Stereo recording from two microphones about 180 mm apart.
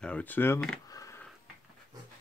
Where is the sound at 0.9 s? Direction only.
20° left (ahead or behind).